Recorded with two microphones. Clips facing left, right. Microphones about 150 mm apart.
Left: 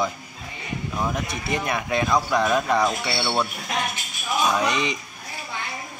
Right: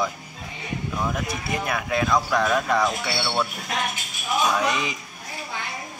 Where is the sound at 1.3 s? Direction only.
5° right (ahead or behind).